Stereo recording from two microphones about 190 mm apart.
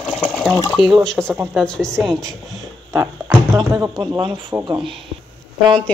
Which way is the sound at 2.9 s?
15° right (ahead or behind).